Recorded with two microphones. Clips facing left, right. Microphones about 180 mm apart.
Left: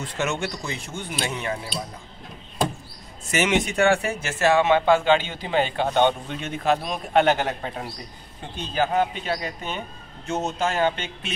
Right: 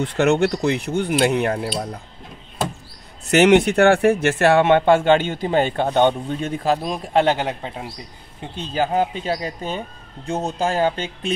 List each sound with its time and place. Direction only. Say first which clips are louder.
0.0 s speech: right 10 dB; 60° right (ahead or behind)
3.3 s a man's voice: right 9 dB; 65° right (ahead or behind); by 7.4 s 30° right (ahead or behind)
7.4 s a man's voice: right 1 dB; 15° right (ahead or behind)
8.9 s a man's voice: right 3 dB; 30° right (ahead or behind)